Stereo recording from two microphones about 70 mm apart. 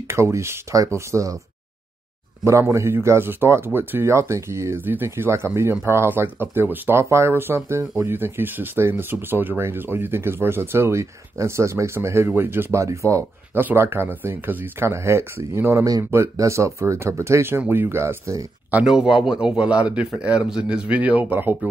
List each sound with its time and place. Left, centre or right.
0.1 s speech: right
2.4 s speech: right
4.8 s speech: right
12.8 s speech: right
13.6 s speech: right
15.8 s speech: right
16.1 s speech: right
17.6 s speech: right
18.9 s a man's voice: centre; by 21.5 s right